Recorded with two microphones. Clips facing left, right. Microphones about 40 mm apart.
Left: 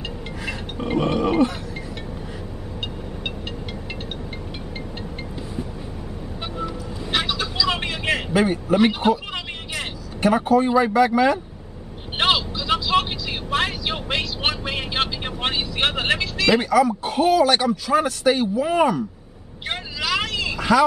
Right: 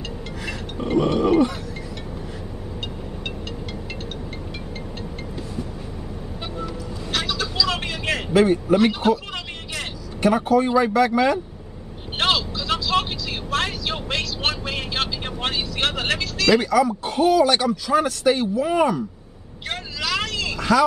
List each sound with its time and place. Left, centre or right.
0.5 s music: centre
6.5 s vehicle: centre
8.3 s speech: centre
12.2 s vehicle: centre
19.7 s vehicle: centre